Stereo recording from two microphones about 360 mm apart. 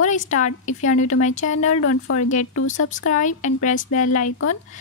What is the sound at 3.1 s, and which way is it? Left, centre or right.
A woman's voice, centre.